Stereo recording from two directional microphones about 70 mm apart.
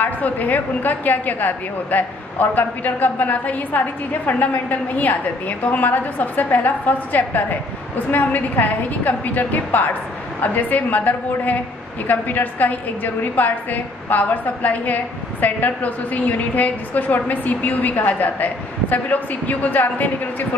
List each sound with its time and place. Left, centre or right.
0.0 s a woman's voice: left